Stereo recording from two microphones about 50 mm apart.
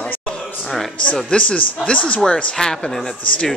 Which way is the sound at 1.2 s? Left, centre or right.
Left.